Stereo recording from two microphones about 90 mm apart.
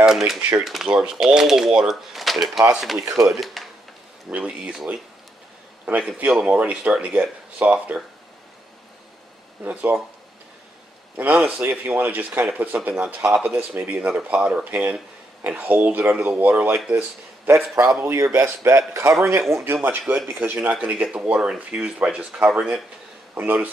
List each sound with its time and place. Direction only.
0.4 s speech: 15° right (ahead or behind)
4.3 s speech: 15° right (ahead or behind)
5.9 s speech: 15° right (ahead or behind)
9.6 s speech: 20° right (ahead or behind)
11.1 s a man's voice: 20° right (ahead or behind)